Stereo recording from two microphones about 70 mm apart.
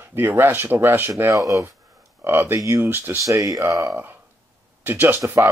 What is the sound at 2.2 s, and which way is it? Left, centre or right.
Speech, right.